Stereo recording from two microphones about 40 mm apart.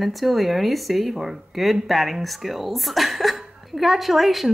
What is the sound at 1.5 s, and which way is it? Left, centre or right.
Speech, centre.